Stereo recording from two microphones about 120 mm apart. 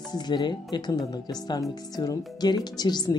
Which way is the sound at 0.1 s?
35° left (ahead or behind).